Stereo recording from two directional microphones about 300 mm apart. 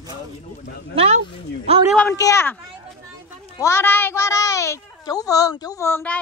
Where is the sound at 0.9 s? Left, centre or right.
Centre.